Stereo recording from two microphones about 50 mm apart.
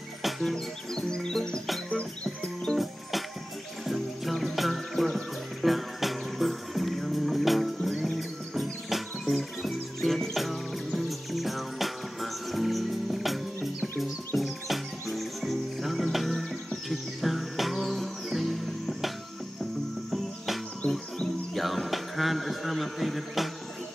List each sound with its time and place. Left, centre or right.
0.2 s music: centre; by 2.7 s left
2.8 s music: centre
20.8 s music: centre
21.5 s a sound: centre